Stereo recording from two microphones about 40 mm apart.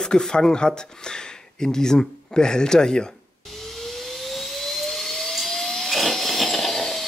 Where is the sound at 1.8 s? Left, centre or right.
Centre.